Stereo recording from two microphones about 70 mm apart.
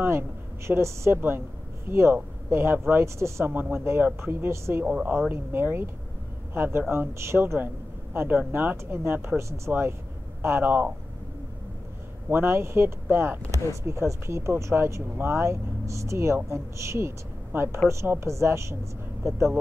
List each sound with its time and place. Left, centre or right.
0.7 s speech: right
1.1 s speech: right
3.4 s speech: right
4.8 s speech: right
12.3 s a woman's voice: right